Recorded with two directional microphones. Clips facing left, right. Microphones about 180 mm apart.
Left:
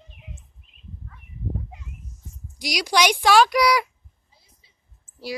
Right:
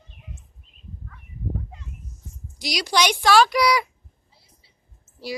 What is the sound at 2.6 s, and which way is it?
A woman's voice, 10° left (ahead or behind).